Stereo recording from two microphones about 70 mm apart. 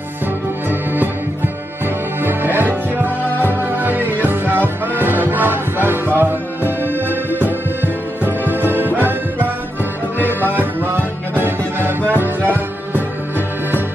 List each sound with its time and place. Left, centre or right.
0.7 s music: right
12.1 s music: right